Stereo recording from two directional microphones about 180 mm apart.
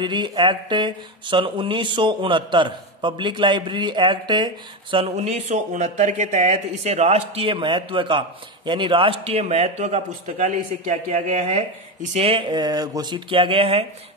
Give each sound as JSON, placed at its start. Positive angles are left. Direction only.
{"t": 0.0, "sound": "speech", "side_deg": -25}
{"t": 4.9, "sound": "speech", "side_deg": -35}